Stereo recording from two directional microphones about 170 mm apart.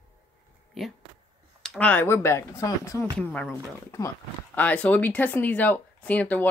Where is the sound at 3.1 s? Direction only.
5° left (ahead or behind).